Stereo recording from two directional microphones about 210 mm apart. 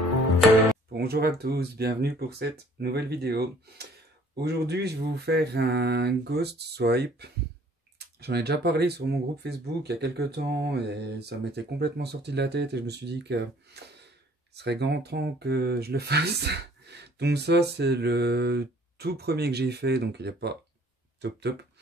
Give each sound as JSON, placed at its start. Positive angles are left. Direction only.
{"t": 0.9, "sound": "speech", "side_deg": -50}